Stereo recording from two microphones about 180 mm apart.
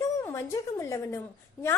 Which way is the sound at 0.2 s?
15° left (ahead or behind).